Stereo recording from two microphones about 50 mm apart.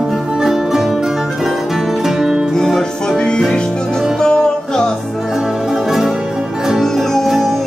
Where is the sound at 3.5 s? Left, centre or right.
Centre.